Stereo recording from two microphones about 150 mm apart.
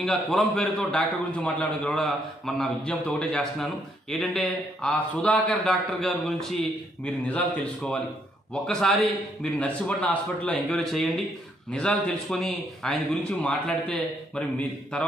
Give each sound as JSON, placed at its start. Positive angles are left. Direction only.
{"t": 0.0, "sound": "a man's voice", "side_deg": 0}